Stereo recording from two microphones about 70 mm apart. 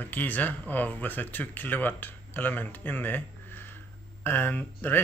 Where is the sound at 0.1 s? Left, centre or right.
Left.